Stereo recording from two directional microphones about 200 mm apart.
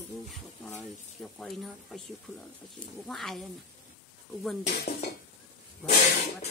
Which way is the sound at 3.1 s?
Centre (ahead or behind).